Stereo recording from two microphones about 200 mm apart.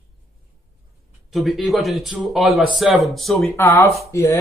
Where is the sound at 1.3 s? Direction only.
Centre (ahead or behind).